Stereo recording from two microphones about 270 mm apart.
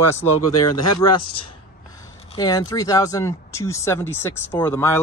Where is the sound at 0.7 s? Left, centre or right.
Left.